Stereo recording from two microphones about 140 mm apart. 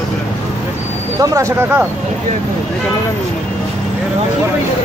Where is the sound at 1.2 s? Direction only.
20° right (ahead or behind).